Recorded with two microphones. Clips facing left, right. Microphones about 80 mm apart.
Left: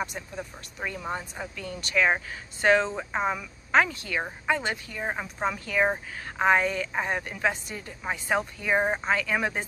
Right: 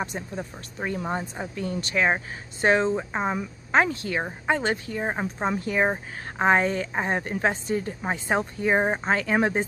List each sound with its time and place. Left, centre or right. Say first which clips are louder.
0.0 s a woman's voice: right 2 dB; right